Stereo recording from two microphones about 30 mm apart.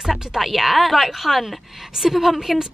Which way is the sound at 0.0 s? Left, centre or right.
Centre.